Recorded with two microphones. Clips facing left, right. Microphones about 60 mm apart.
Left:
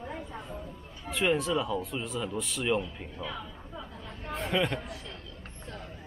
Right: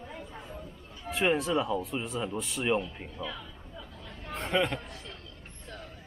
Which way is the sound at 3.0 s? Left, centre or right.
Centre.